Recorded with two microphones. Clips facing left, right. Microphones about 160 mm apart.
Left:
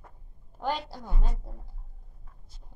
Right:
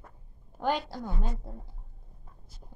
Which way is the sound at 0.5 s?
Centre (ahead or behind).